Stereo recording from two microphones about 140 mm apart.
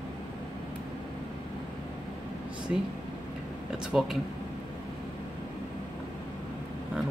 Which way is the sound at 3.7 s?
5° right (ahead or behind).